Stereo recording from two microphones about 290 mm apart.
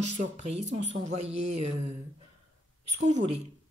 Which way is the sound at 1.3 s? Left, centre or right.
Right.